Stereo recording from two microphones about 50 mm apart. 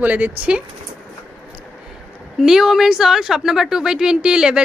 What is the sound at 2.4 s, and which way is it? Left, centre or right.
A woman's voice, centre.